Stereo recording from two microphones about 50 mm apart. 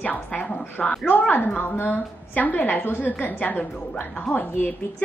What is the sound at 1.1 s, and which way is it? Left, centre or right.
A woman's voice, left.